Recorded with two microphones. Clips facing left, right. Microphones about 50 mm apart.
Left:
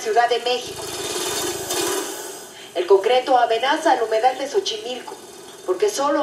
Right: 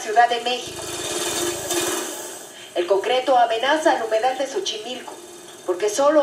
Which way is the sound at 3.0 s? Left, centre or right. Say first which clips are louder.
Left 1 dB; centre.